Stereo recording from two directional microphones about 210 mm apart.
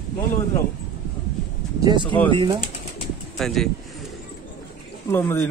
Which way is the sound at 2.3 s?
25° right (ahead or behind).